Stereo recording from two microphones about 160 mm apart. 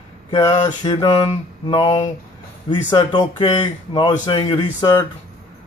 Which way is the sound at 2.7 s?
30° left (ahead or behind).